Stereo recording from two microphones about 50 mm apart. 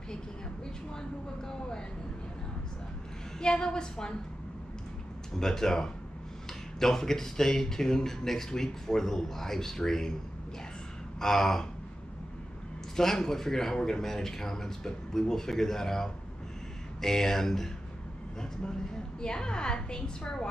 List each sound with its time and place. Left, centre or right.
1.5 s speech: centre
3.3 s speech: centre
5.3 s speech: centre
11.1 s speech: centre
12.9 s speech: centre